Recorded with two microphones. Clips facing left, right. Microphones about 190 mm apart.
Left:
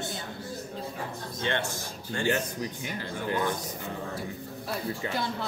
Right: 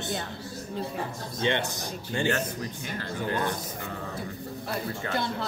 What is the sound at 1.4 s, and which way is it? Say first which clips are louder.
Speech: right 3 dB; 20° right (ahead or behind).